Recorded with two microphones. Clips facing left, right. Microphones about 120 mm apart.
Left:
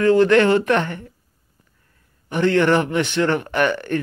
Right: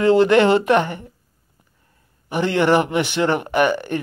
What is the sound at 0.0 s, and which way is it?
Speech, 15° right (ahead or behind).